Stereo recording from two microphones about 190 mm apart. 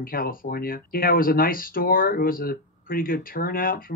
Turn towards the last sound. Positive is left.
turn(degrees=50)  # may be behind; listen again after turning